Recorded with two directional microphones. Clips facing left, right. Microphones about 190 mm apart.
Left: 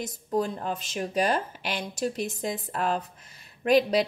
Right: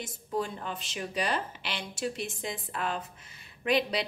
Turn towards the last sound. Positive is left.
turn(degrees=45)  # may be behind; listen again after turning